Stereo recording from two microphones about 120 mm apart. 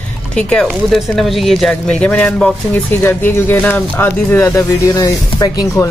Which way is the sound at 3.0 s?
15° left (ahead or behind).